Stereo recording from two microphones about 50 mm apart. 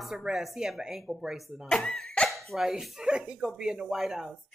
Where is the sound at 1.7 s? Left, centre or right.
Centre.